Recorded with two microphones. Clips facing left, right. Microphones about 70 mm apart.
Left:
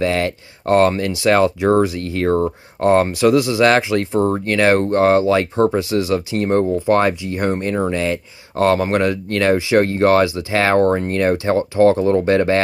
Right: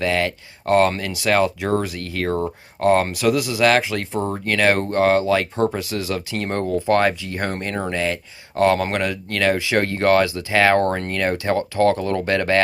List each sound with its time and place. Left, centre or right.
0.0 s speech: left